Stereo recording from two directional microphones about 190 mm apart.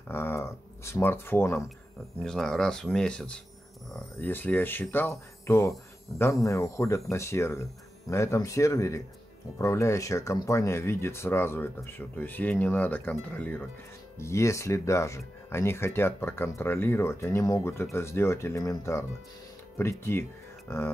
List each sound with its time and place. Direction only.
0.1 s speech: 15° left (ahead or behind)